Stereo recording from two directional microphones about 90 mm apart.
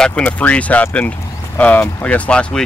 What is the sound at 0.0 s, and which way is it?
Speech, 15° left (ahead or behind).